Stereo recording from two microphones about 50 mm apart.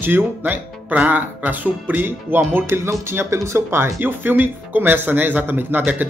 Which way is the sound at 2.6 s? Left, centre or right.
Right.